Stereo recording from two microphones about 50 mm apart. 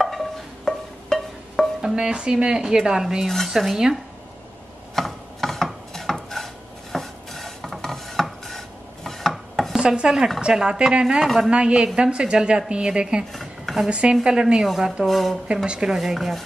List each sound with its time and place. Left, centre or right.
0.0 s music: centre
1.8 s speech: centre
3.3 s dishes: centre
4.9 s a sound: centre
9.8 s chopping: centre
10.5 s speech: centre
11.2 s dishes: centre
11.5 s a woman's voice: centre
13.3 s dishes: centre
13.8 s a woman's voice: right
15.0 s dishes: centre
15.4 s a woman's voice: right
16.0 s dishes: centre